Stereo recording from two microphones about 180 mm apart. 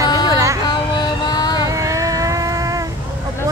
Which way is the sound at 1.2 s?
20° left (ahead or behind).